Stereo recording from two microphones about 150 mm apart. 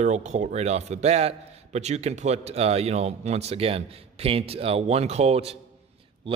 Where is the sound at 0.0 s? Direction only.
50° right (ahead or behind).